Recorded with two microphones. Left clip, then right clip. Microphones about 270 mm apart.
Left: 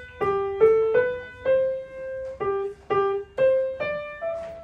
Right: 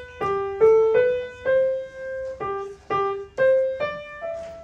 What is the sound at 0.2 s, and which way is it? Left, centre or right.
Music, centre.